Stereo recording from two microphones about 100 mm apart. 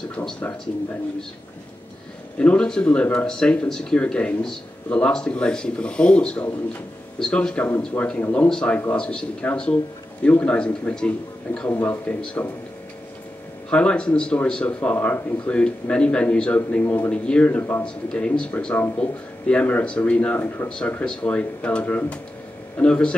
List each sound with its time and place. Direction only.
0.1 s speech: 10° left (ahead or behind)
2.3 s speech: 10° left (ahead or behind)
13.7 s speech: 10° left (ahead or behind)